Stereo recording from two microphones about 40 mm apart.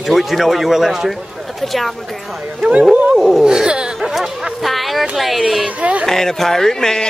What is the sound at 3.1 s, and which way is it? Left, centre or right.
Speech, centre.